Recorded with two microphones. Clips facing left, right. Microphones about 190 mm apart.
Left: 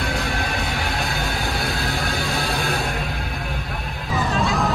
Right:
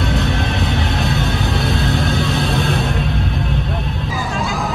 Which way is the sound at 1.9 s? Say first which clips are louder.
Right 6 dB; 20° right (ahead or behind).